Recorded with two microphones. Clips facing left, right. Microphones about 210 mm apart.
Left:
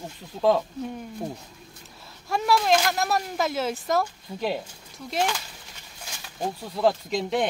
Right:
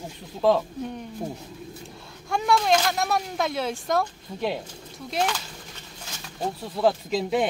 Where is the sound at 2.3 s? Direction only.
Centre (ahead or behind).